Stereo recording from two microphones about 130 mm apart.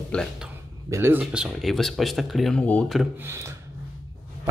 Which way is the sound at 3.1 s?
20° right (ahead or behind).